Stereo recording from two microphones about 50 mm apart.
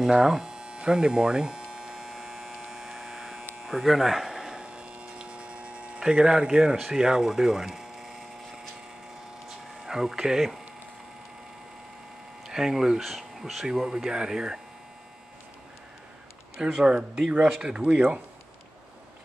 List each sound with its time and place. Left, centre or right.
0.0 s electric shaver: centre
4.7 s electric shaver: right
5.9 s speech: centre
9.8 s speech: centre
12.4 s speech: centre
13.7 s speech: centre
16.5 s speech: centre
17.9 s speech: right